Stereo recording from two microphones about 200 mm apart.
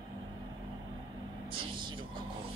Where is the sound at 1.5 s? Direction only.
25° right (ahead or behind).